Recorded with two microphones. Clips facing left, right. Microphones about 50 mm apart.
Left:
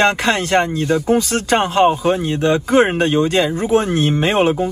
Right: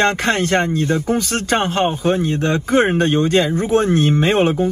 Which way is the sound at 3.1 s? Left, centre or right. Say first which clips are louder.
Even; right.